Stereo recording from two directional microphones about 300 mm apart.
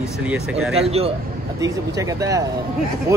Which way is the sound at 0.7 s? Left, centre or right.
Centre.